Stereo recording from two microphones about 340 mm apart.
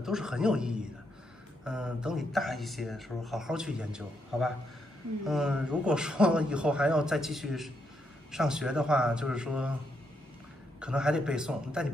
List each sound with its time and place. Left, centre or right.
0.0 s speech: centre
10.8 s speech: centre